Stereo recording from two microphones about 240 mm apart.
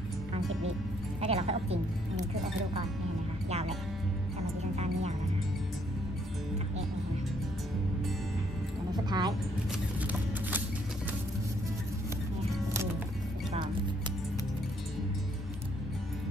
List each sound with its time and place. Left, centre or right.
1.2 s a woman's voice: right
3.4 s music: right
8.9 s music: centre
9.9 s a sound: centre